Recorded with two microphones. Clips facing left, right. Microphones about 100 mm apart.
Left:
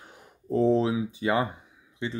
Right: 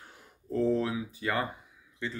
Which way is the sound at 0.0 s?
20° left (ahead or behind).